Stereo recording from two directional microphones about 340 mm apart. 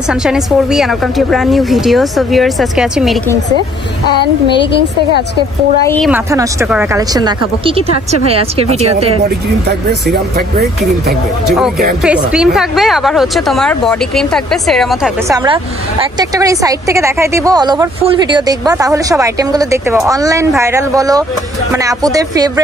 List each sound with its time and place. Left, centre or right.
0.1 s speech: centre
5.9 s a woman's voice: centre
12.0 s speech: centre
15.3 s a woman's voice: centre